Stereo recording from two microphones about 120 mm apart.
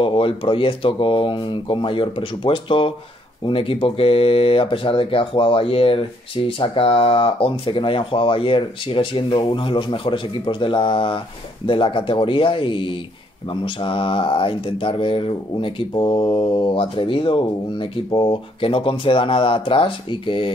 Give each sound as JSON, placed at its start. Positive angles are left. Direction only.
{"t": 0.0, "sound": "speech", "side_deg": 50}